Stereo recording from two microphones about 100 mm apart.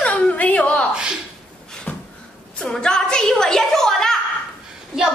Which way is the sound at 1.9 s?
15° left (ahead or behind).